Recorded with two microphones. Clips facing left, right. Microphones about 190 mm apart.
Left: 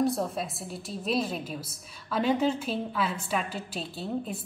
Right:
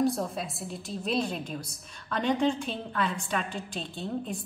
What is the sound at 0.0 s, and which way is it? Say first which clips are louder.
A woman's voice: even; centre (ahead or behind).